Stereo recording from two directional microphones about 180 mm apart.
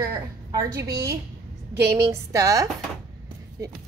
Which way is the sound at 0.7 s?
20° right (ahead or behind).